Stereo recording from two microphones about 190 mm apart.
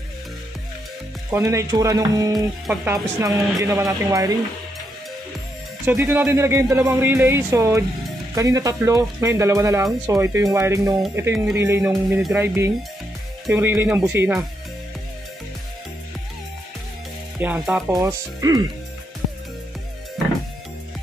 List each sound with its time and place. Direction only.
1.3 s speech: 15° right (ahead or behind)
2.6 s speech: 10° right (ahead or behind)
5.9 s speech: 10° right (ahead or behind)
17.4 s speech: 5° right (ahead or behind)
17.9 s speech: 20° right (ahead or behind)